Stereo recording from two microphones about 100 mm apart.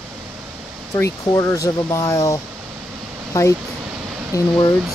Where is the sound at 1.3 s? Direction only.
35° left (ahead or behind).